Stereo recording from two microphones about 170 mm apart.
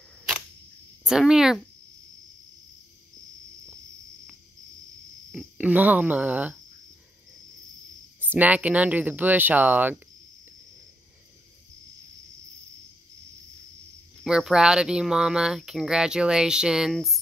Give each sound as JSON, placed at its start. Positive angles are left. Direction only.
{"t": 1.0, "sound": "speech", "side_deg": -5}
{"t": 5.3, "sound": "speech", "side_deg": -5}
{"t": 8.2, "sound": "speech", "side_deg": -10}
{"t": 14.2, "sound": "speech", "side_deg": -5}